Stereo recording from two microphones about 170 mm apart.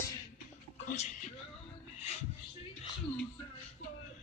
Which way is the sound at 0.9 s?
45° left (ahead or behind).